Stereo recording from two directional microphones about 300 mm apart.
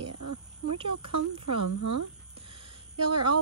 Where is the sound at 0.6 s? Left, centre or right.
Centre.